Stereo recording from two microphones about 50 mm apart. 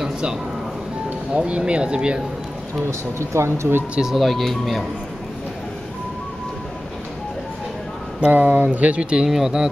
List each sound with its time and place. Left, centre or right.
0.0 s a sound: centre
1.3 s speech: right
2.9 s speech: right
4.1 s speech: centre
8.3 s speech: right
9.3 s speech: centre